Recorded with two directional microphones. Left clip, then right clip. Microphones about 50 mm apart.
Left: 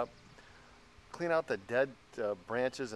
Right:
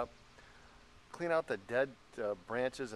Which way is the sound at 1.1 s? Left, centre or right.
Centre.